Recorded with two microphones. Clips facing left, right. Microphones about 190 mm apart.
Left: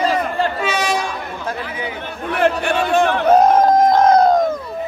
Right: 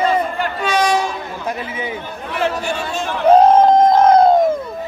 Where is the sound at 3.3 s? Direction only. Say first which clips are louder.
Right 3 dB; 30° right (ahead or behind).